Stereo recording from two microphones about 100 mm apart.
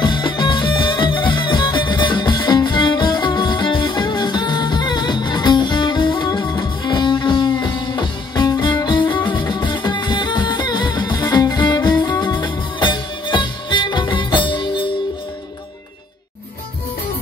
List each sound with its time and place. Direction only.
0.0 s music: 50° left (ahead or behind)